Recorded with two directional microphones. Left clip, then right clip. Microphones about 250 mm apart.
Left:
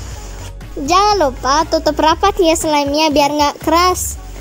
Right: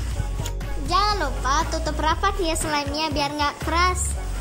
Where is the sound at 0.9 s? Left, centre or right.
Left.